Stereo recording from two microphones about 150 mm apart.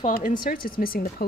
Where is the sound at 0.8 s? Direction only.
80° left.